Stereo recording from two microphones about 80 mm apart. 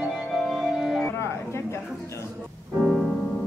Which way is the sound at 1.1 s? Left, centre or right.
Left.